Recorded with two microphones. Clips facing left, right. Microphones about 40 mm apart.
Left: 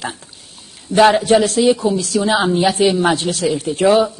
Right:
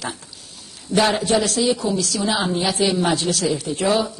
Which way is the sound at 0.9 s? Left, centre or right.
Left.